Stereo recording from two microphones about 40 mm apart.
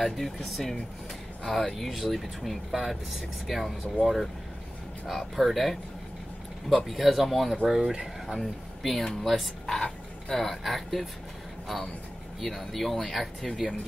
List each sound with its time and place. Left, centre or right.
0.0 s speech: centre
6.9 s speech: centre
8.4 s speech: centre
9.8 s a sound: left
10.3 s speech: centre